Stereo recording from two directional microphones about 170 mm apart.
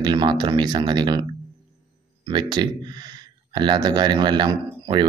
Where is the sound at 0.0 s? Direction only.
25° right (ahead or behind).